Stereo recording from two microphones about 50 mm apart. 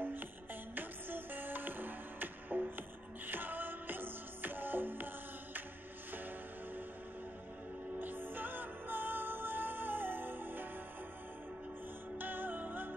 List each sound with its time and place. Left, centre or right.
0.0 s music: right
8.0 s music: right
12.2 s music: right